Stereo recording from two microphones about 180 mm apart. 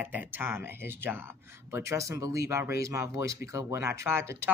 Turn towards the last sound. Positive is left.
turn(degrees=-15)  # may be behind; listen again after turning